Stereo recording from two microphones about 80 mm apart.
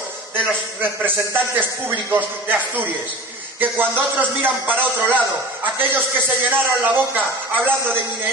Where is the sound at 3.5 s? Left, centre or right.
Right.